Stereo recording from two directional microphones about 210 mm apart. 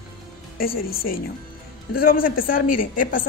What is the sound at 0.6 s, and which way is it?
A woman's voice, 45° left (ahead or behind).